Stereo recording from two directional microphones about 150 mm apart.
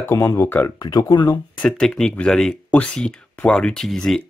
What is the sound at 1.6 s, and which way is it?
Speech, 5° left (ahead or behind).